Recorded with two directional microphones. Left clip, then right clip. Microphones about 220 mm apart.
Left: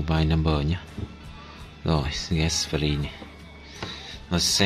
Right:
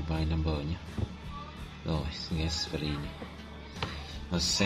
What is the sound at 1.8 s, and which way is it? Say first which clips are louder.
Speech: left 9 dB; 35° left (ahead or behind).